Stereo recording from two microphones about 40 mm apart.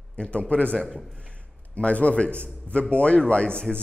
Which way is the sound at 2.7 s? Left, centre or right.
Left.